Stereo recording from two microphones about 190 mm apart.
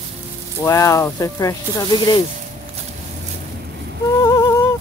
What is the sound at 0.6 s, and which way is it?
Speech, 15° left (ahead or behind).